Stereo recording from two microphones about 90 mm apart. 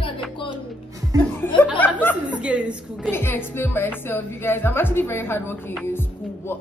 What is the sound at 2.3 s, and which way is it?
Speech, 10° right (ahead or behind).